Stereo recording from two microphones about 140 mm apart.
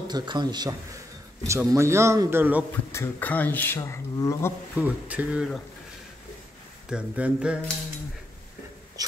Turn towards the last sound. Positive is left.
turn(degrees=-5)  # may be behind; listen again after turning